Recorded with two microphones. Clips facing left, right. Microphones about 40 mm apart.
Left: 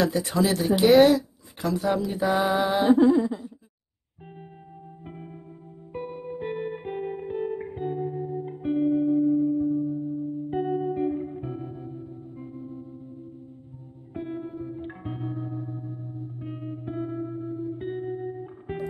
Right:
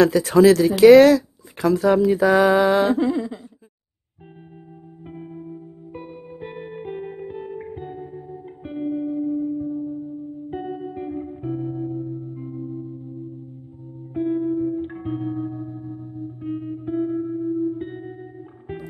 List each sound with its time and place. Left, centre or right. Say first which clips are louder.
0.0 s speech: right 10 dB; right
1.6 s speech: right 8 dB; right
2.0 s speech: right 8 dB; right
5.0 s music: right 8 dB; centre
14.1 s music: right 11 dB; centre